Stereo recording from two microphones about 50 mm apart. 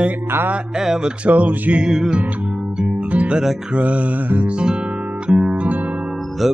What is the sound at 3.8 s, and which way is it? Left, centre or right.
Music, right.